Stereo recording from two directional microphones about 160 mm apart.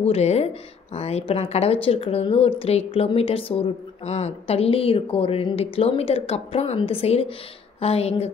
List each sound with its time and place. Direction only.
0.0 s speech: 40° left (ahead or behind)